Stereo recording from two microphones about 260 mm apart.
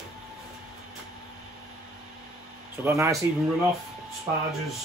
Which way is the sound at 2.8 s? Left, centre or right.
Centre.